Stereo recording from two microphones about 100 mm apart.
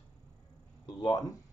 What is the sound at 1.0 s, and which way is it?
Speech, 45° left (ahead or behind).